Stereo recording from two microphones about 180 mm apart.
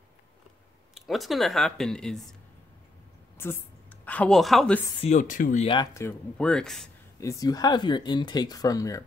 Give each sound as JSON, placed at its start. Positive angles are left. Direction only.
{"t": 0.9, "sound": "speech", "side_deg": 0}
{"t": 3.4, "sound": "a woman's voice", "side_deg": 15}
{"t": 5.0, "sound": "speech", "side_deg": 45}
{"t": 5.9, "sound": "speech", "side_deg": 10}
{"t": 7.2, "sound": "speech", "side_deg": 20}